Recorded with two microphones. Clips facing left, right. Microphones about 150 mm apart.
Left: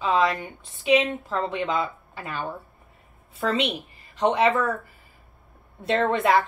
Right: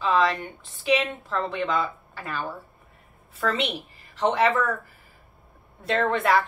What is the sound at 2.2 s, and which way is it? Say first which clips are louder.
A woman's voice: even; 20° left (ahead or behind).